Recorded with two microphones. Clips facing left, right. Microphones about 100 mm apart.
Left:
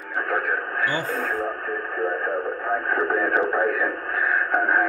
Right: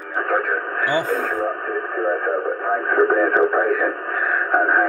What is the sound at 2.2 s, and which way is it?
Speech, 35° right (ahead or behind).